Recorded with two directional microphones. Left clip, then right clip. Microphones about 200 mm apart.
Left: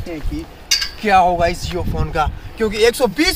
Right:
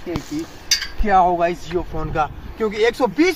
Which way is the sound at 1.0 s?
15° left (ahead or behind).